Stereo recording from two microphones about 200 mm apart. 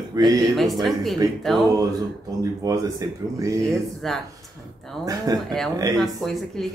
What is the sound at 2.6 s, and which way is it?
Speech, 15° right (ahead or behind).